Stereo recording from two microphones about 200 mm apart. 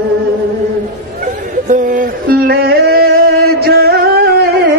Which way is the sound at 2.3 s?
50° right (ahead or behind).